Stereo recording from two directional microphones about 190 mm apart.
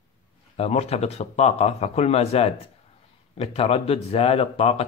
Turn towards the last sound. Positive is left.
turn(degrees=30)  # may be behind; listen again after turning